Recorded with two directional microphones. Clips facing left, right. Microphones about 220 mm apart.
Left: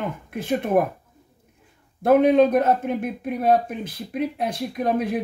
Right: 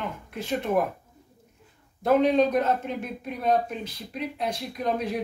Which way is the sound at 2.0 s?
50° left (ahead or behind).